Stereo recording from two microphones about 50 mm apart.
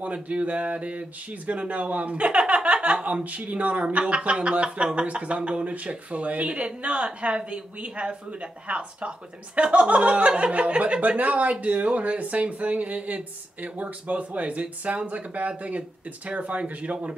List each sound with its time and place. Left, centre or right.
0.0 s speech: right